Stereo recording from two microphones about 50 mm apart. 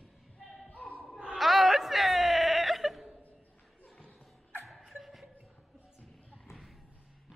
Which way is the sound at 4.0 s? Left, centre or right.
Left.